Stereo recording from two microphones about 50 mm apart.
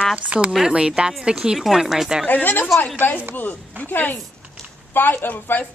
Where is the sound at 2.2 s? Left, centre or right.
Left.